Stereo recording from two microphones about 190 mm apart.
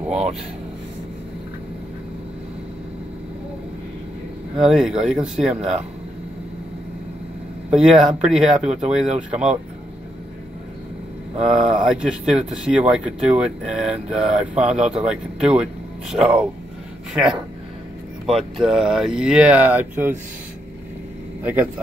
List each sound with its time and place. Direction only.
0.1 s speech: 35° right (ahead or behind)
4.6 s speech: 5° right (ahead or behind)
7.7 s speech: 5° right (ahead or behind)
8.5 s speech: 35° right (ahead or behind)
11.4 s speech: 5° right (ahead or behind)
21.4 s speech: 10° right (ahead or behind)